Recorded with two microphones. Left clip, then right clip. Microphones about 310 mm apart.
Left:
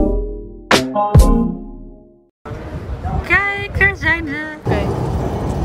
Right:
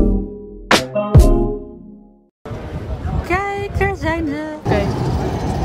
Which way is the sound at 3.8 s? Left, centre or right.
Centre.